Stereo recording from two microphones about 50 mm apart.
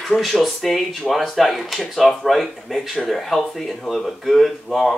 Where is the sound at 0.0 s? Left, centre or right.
Centre.